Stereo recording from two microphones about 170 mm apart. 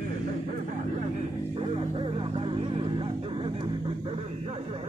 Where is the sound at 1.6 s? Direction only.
30° right (ahead or behind).